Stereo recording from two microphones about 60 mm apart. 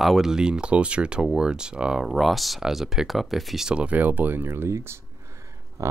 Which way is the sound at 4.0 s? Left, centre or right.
Right.